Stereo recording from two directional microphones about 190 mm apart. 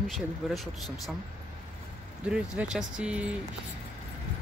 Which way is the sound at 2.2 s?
5° right (ahead or behind).